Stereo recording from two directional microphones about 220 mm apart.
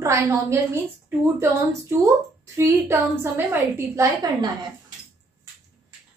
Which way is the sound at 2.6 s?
10° right (ahead or behind).